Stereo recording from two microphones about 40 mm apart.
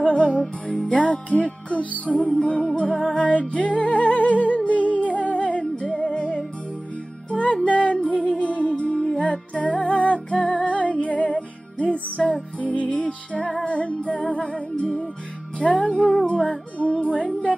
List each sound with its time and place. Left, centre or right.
0.0 s music: left
12.2 s music: centre
12.7 s music: left
15.8 s music: left
16.3 s music: left